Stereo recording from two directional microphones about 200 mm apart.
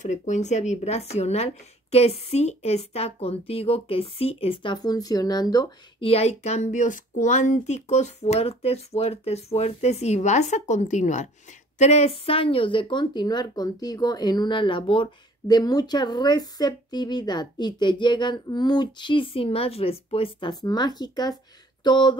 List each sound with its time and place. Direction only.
0.0 s speech: 35° left (ahead or behind)